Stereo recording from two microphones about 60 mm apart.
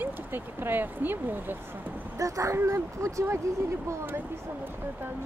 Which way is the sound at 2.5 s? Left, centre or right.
Right.